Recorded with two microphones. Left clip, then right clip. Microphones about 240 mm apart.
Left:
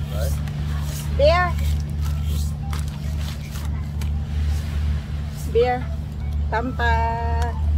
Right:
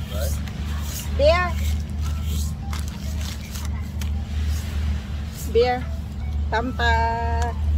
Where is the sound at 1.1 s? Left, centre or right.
Centre.